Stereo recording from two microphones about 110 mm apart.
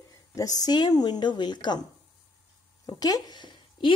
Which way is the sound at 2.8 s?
35° left (ahead or behind).